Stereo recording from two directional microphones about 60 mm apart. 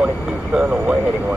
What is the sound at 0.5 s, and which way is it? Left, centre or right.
Vehicle, centre.